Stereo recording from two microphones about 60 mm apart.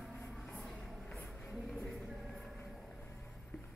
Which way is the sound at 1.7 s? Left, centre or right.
Centre.